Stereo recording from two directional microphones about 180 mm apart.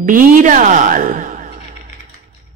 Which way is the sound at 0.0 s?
50° right (ahead or behind).